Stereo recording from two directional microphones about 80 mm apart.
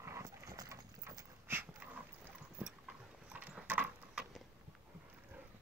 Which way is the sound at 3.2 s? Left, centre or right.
Centre.